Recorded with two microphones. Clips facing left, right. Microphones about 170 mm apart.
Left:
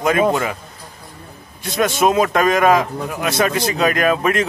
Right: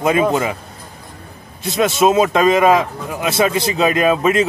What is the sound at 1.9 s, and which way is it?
A man's voice, 20° right (ahead or behind).